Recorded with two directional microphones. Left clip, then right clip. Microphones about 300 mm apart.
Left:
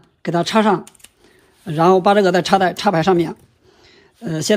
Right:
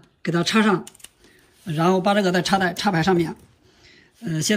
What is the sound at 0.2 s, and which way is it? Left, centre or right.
Speech, centre.